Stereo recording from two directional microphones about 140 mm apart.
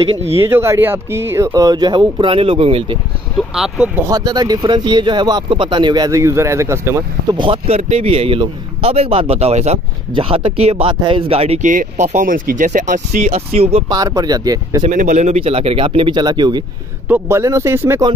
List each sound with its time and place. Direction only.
0.0 s a man's voice: 40° right (ahead or behind)
0.4 s speech: 20° right (ahead or behind); by 3.0 s 40° right (ahead or behind)
3.5 s speech: 5° right (ahead or behind)
4.1 s speech: 30° right (ahead or behind)
7.3 s a man's voice: 35° right (ahead or behind)
10.1 s a man's voice: 40° right (ahead or behind)
11.6 s speech: 65° right (ahead or behind); by 13.8 s 50° right (ahead or behind)
13.8 s speech: 25° right (ahead or behind)
14.8 s a man's voice: 60° right (ahead or behind); by 16.6 s 30° right (ahead or behind)
17.1 s speech: 20° right (ahead or behind)